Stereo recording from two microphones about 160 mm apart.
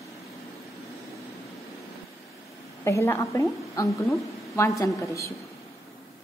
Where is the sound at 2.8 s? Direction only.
15° left (ahead or behind).